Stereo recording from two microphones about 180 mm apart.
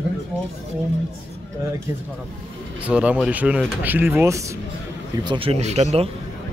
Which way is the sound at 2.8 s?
5° right (ahead or behind).